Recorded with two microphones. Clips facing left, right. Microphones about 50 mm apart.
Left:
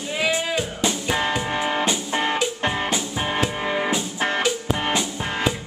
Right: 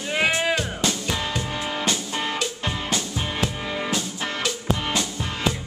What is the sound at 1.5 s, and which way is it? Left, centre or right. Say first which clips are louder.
Music: left 5 dB; left.